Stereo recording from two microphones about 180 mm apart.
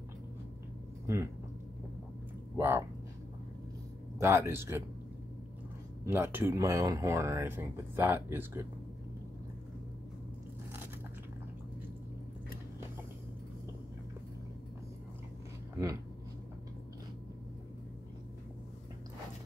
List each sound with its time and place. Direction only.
1.0 s speech: 15° right (ahead or behind)
2.5 s speech: 10° right (ahead or behind)
4.2 s speech: 15° right (ahead or behind)
6.0 s speech: 15° right (ahead or behind)